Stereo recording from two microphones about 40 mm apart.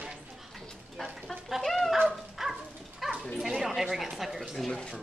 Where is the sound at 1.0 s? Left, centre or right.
Centre.